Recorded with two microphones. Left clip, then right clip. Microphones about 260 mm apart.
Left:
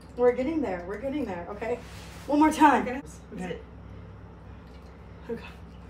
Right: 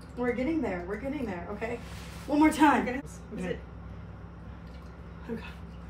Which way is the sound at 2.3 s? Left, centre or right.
Centre.